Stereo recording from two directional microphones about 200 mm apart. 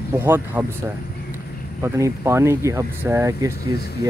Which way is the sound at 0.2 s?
10° right (ahead or behind).